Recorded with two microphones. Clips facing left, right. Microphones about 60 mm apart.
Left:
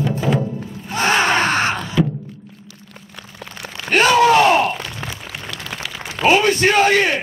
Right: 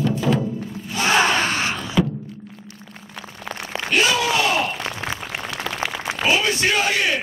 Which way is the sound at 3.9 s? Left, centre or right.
Left.